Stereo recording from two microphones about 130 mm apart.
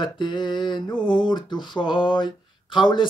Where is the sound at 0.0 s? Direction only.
35° left (ahead or behind).